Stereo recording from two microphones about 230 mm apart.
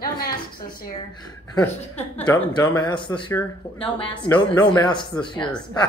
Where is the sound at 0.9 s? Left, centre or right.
Centre.